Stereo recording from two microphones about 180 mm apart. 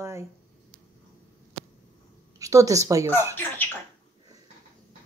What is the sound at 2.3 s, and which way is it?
A child's voice, 20° right (ahead or behind).